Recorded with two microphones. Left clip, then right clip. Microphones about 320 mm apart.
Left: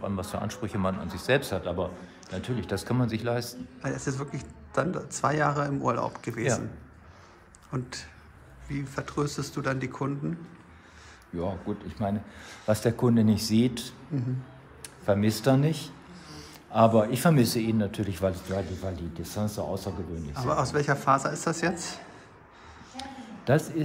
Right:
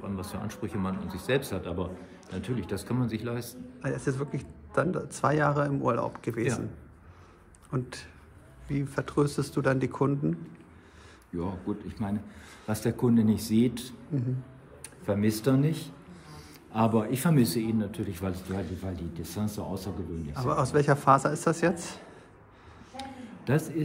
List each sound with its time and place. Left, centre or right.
0.0 s speech: centre
3.8 s a man's voice: centre
7.7 s a man's voice: centre
11.3 s speech: centre
15.0 s a man's voice: centre
20.3 s a man's voice: centre
22.9 s a sound: centre